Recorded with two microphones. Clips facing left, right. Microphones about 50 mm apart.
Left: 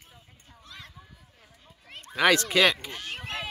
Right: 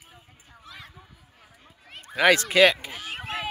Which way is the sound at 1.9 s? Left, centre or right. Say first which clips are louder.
Right 2 dB; centre.